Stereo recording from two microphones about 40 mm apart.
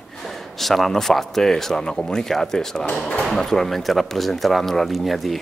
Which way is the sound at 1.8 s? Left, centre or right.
Left.